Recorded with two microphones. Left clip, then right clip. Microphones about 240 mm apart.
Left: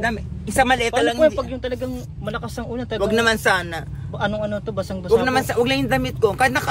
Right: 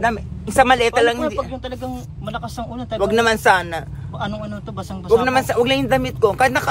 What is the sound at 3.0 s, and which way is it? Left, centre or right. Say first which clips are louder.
Speech: right 3 dB; centre.